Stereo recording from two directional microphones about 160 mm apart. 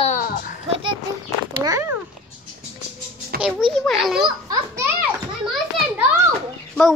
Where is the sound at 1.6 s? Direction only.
20° right (ahead or behind).